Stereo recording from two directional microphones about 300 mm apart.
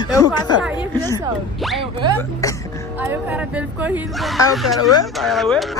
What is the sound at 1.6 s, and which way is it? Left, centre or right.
Zipper, centre.